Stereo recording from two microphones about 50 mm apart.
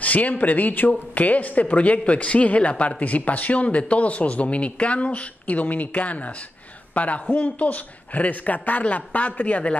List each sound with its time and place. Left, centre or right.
0.0 s speech: left
6.9 s a sound: left
7.3 s speech: left